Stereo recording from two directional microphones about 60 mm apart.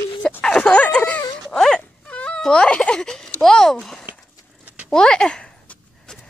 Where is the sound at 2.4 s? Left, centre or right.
Centre.